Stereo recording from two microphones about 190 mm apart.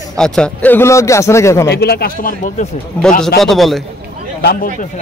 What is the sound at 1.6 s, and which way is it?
A man's voice, 55° left (ahead or behind).